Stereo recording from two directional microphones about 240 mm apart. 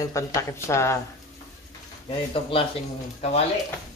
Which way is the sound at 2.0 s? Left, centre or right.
Left.